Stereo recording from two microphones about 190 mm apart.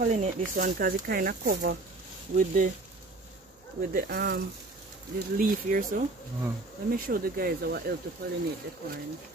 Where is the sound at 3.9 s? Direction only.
50° right (ahead or behind).